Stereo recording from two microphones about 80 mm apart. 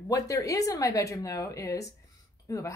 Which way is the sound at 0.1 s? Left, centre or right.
Left.